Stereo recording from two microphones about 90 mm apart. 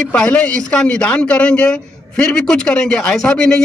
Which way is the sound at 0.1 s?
10° left (ahead or behind).